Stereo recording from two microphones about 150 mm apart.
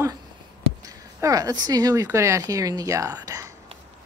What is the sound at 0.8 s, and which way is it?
Speech, 25° right (ahead or behind).